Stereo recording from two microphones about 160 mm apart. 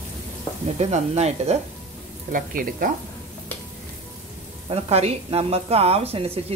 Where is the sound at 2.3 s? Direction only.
60° right (ahead or behind).